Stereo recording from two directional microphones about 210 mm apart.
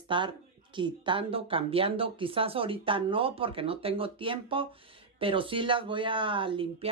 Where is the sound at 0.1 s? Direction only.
20° right (ahead or behind).